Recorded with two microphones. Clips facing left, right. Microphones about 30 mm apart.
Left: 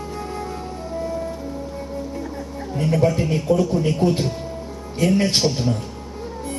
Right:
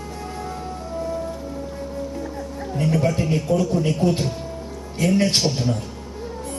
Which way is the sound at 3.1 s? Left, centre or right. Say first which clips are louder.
Left 1 dB; centre.